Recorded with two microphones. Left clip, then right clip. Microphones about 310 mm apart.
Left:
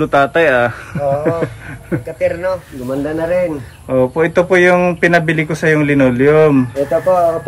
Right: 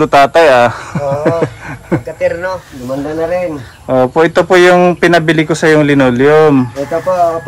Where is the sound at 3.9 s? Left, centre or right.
Centre.